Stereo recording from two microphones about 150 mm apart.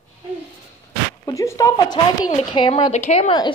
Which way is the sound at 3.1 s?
45° left (ahead or behind).